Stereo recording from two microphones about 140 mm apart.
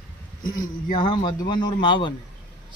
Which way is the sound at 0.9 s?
35° left (ahead or behind).